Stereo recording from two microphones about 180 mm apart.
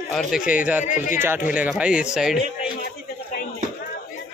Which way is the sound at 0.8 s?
45° left (ahead or behind).